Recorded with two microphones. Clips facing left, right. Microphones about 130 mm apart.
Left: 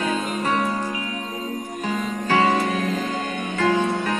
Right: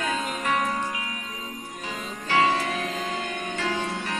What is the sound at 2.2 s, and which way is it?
Music, 40° left (ahead or behind).